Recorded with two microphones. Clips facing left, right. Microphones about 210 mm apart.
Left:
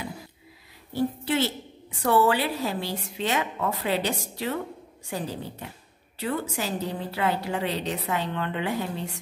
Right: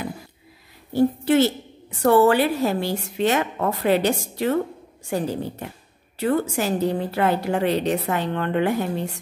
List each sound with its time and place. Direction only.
0.9 s a woman's voice: 45° right (ahead or behind)